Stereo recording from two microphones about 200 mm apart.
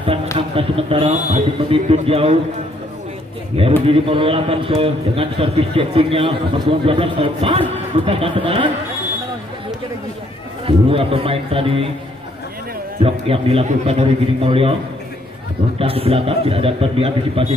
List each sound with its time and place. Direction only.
0.6 s a man's voice: 25° right (ahead or behind)
3.5 s a man's voice: 30° right (ahead or behind)
10.9 s a man's voice: 30° right (ahead or behind)
13.0 s a man's voice: 30° right (ahead or behind)
15.8 s a man's voice: 30° right (ahead or behind)